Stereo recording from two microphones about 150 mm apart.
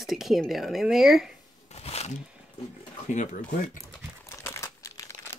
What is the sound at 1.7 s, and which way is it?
Speech, 45° left (ahead or behind).